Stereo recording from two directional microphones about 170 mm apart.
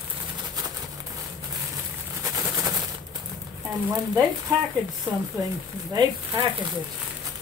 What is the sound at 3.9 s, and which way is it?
Speech, 20° right (ahead or behind).